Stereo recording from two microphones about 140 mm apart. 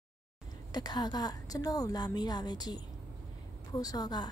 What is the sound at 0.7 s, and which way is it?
A woman's voice, 30° left (ahead or behind).